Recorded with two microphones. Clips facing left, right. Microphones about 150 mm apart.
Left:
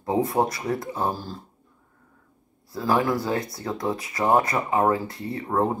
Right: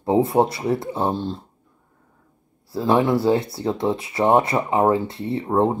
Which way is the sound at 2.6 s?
25° right (ahead or behind).